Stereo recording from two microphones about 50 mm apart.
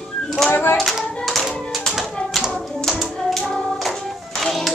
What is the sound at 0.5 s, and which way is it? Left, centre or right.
Speech, left.